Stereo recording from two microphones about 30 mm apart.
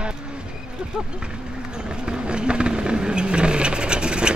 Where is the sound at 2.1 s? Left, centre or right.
Right.